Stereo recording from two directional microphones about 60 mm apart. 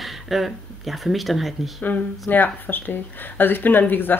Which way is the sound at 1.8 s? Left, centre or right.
Left.